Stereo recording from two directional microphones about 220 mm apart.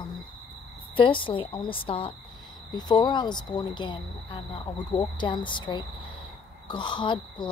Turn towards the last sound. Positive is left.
turn(degrees=20)  # may be behind; listen again after turning